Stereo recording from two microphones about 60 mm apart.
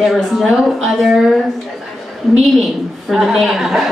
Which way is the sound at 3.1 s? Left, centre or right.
Centre.